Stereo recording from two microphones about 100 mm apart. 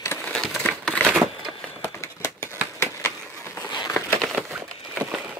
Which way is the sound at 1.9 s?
30° left (ahead or behind).